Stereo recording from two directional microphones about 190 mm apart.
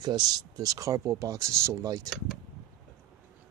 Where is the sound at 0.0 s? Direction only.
20° right (ahead or behind).